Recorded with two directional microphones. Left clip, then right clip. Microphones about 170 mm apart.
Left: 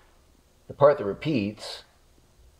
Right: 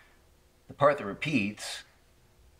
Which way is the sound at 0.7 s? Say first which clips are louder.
Left 5 dB; 70° left (ahead or behind).